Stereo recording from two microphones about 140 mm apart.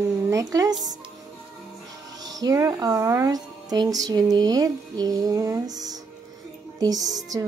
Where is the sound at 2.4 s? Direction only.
25° right (ahead or behind).